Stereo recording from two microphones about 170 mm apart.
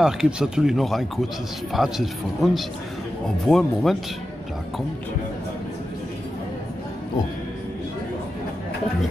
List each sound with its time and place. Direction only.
0.0 s speech: 5° right (ahead or behind)